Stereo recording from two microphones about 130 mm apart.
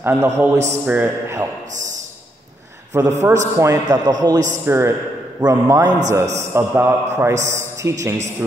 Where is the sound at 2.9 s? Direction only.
20° right (ahead or behind).